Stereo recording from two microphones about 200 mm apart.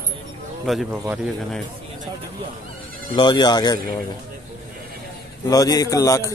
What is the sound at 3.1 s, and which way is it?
Speech, 20° left (ahead or behind).